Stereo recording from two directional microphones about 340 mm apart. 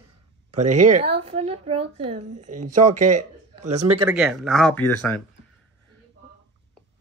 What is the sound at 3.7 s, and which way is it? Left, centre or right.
Speech, centre.